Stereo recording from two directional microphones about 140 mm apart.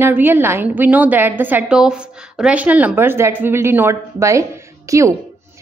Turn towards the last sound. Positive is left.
turn(degrees=-20)  # may be behind; listen again after turning